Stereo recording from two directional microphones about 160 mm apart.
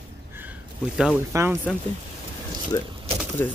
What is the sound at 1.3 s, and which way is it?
Speech, 15° right (ahead or behind).